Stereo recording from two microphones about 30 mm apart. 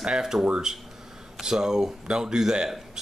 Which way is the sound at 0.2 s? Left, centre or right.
Centre.